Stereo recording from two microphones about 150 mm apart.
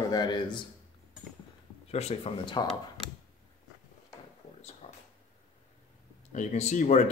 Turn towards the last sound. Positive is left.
turn(degrees=50)  # may be behind; listen again after turning